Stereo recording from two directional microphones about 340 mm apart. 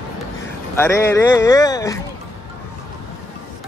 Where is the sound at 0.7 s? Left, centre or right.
Centre.